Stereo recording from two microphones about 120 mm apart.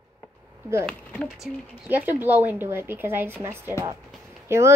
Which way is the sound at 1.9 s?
15° right (ahead or behind).